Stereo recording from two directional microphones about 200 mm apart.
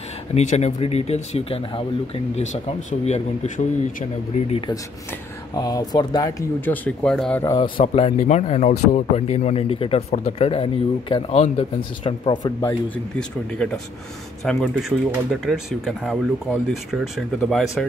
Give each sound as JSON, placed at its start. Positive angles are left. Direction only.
{"t": 0.3, "sound": "speech", "side_deg": 35}
{"t": 7.5, "sound": "speech", "side_deg": 25}
{"t": 12.9, "sound": "speech", "side_deg": 5}
{"t": 17.4, "sound": "speech", "side_deg": 0}